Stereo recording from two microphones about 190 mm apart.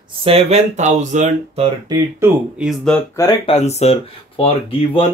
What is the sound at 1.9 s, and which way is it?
Speech, 15° right (ahead or behind).